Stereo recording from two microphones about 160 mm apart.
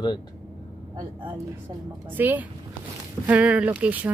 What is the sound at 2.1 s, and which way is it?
Speech, 10° right (ahead or behind).